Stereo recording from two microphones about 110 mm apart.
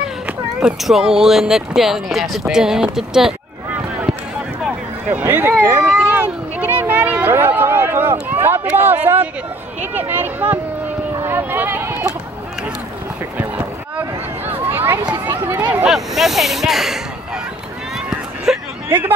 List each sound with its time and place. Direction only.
0.6 s speech: 5° right (ahead or behind)
5.2 s speech: 20° right (ahead or behind)
6.0 s a sound: 15° right (ahead or behind)
8.6 s speech: 15° right (ahead or behind)
14.5 s a sound: 20° right (ahead or behind)
15.9 s speech: centre (ahead or behind)
18.5 s hubbub: 5° right (ahead or behind)
18.9 s speech: 20° right (ahead or behind)